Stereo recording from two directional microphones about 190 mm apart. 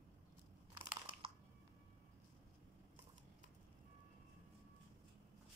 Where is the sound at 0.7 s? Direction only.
25° right (ahead or behind).